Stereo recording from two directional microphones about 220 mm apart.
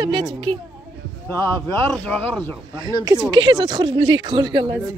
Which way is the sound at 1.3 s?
5° left (ahead or behind).